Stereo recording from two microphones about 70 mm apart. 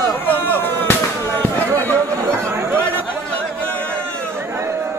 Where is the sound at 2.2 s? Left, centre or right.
Right.